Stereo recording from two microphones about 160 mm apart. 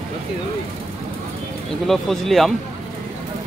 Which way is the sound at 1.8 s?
Centre (ahead or behind).